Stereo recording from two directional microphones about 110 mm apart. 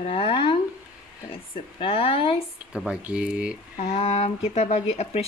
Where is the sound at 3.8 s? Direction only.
65° left (ahead or behind).